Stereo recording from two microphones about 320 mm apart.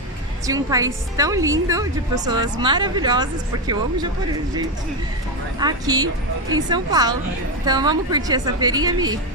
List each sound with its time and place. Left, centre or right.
0.5 s a woman's voice: centre
5.6 s a woman's voice: centre